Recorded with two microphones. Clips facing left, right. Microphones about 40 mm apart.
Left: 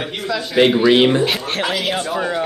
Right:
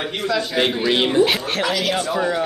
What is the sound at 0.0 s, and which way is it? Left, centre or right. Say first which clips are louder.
Speech: right 1 dB; centre.